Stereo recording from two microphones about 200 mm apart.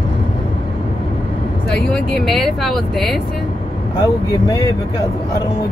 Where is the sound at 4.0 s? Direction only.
20° left (ahead or behind).